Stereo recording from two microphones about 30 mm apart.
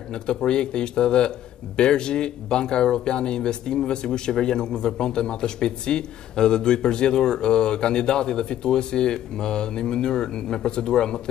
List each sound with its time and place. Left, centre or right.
0.1 s speech: left